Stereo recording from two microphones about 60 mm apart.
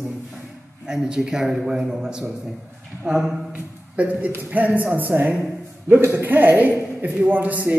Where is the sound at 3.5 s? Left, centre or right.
Right.